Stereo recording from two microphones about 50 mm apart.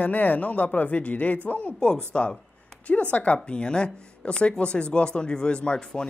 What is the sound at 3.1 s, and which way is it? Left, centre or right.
Speech, left.